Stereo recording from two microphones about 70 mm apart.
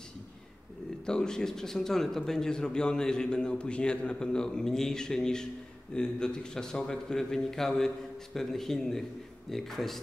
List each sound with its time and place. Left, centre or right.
1.0 s a man's voice: centre